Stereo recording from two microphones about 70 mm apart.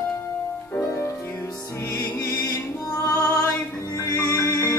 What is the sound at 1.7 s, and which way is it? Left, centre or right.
Music, left.